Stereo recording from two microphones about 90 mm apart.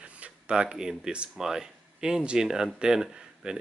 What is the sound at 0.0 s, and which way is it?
Speech, 10° right (ahead or behind).